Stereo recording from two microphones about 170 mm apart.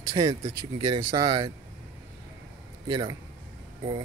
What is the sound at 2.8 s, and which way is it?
Speech, 25° right (ahead or behind).